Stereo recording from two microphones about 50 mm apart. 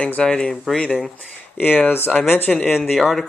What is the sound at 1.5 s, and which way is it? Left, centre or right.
Speech, left.